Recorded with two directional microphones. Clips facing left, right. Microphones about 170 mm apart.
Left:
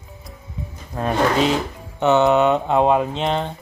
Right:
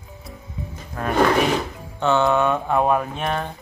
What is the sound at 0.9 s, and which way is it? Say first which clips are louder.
Speech: right 1 dB; 20° left (ahead or behind).